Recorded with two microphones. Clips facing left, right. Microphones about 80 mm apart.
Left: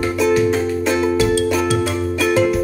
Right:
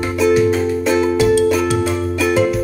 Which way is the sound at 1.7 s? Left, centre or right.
Centre.